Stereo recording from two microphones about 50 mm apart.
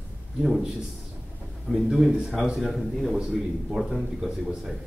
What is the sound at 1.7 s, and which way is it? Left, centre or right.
A man's voice, centre.